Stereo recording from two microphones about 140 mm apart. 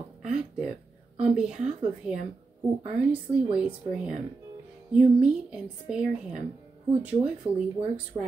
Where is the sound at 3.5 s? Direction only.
5° right (ahead or behind).